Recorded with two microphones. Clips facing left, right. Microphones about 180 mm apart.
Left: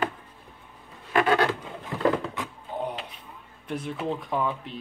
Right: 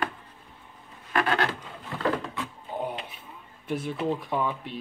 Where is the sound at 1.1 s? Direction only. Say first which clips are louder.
Left 4 dB; 15° left (ahead or behind).